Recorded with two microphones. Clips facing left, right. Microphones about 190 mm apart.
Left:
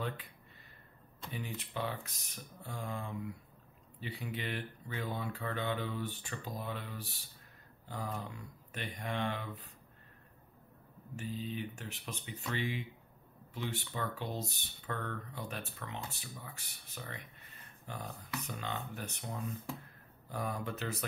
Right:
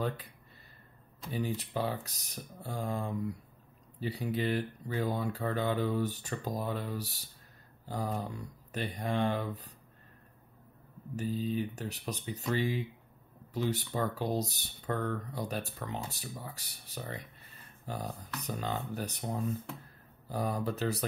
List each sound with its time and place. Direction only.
1.3 s speech: 35° right (ahead or behind)
11.1 s speech: 40° right (ahead or behind)